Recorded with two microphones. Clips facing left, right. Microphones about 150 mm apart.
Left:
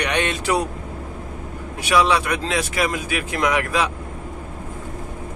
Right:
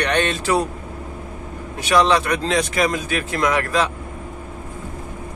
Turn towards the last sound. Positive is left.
turn(degrees=10)  # may be behind; listen again after turning